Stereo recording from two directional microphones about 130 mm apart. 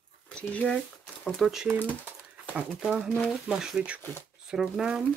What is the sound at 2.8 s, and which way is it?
Speech, 10° right (ahead or behind).